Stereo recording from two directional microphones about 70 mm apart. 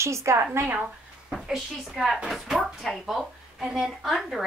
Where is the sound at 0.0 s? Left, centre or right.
Right.